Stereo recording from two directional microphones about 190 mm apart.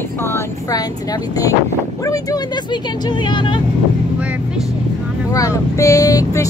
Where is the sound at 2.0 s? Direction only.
20° left (ahead or behind).